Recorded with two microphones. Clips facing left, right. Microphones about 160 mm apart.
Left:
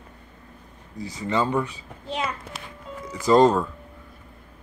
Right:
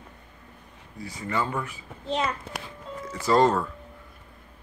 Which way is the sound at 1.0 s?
25° left (ahead or behind).